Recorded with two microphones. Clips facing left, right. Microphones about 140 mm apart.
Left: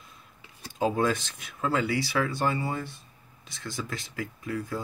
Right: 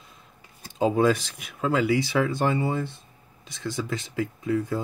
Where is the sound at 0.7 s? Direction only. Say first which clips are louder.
Right 5 dB; 20° right (ahead or behind).